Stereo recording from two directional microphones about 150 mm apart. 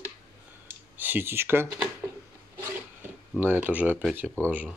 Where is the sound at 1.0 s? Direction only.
15° right (ahead or behind).